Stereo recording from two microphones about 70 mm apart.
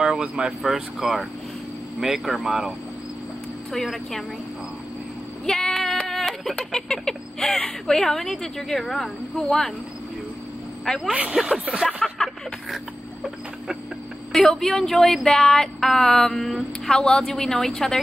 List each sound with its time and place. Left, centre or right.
0.0 s speech: centre
3.7 s speech: centre
5.4 s speech: centre
11.1 s speech: centre
11.3 s speech: centre
11.8 s music: centre
14.4 s speech: centre